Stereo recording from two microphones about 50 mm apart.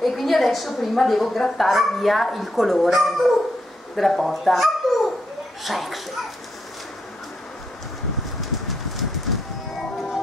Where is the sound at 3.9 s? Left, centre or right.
Centre.